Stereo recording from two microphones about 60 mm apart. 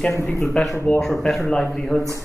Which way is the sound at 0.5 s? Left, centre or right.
Centre.